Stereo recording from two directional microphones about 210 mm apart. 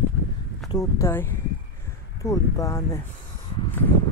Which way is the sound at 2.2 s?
15° left (ahead or behind).